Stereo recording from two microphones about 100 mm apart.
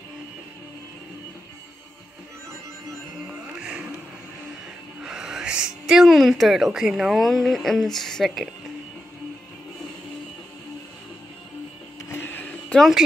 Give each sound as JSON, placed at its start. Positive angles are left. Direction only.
{"t": 3.5, "sound": "music", "side_deg": -10}
{"t": 5.0, "sound": "a woman's voice", "side_deg": -5}
{"t": 12.1, "sound": "a sound", "side_deg": 20}
{"t": 12.7, "sound": "speech", "side_deg": 0}